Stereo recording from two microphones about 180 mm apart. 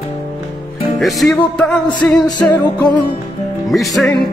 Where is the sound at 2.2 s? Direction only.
20° left (ahead or behind).